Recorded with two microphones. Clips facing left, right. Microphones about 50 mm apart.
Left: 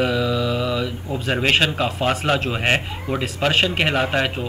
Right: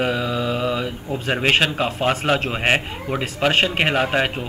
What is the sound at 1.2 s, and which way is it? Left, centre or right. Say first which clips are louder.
A man's voice: even; centre.